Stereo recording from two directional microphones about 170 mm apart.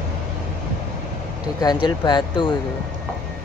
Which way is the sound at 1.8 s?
25° left (ahead or behind).